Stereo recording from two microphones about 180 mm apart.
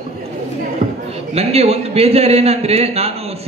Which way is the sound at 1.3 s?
35° right (ahead or behind).